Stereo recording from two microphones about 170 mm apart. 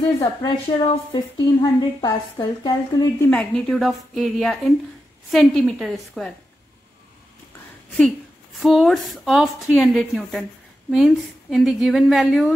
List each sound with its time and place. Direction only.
0.2 s a woman's voice: 30° left (ahead or behind)
3.3 s a woman's voice: 5° left (ahead or behind)
8.5 s a woman's voice: centre (ahead or behind)
11.5 s a woman's voice: centre (ahead or behind)